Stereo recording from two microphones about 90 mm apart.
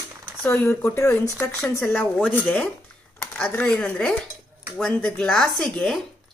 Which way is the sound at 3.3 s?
15° left (ahead or behind).